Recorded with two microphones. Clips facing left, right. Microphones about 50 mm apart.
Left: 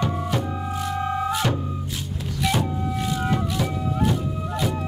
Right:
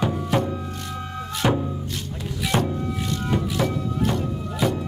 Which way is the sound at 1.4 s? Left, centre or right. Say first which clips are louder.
Right 4 dB; centre.